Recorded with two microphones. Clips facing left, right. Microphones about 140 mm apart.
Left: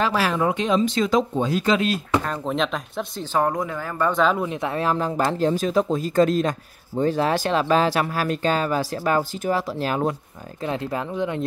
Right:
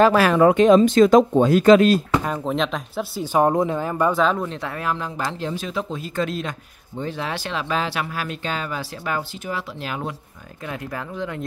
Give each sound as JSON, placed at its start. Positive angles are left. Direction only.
{"t": 0.0, "sound": "speech", "side_deg": -55}
{"t": 2.2, "sound": "speech", "side_deg": -5}
{"t": 3.2, "sound": "speech", "side_deg": -20}
{"t": 4.1, "sound": "speech", "side_deg": 0}
{"t": 4.4, "sound": "speech", "side_deg": 15}
{"t": 4.8, "sound": "speech", "side_deg": 40}
{"t": 10.6, "sound": "speech", "side_deg": 25}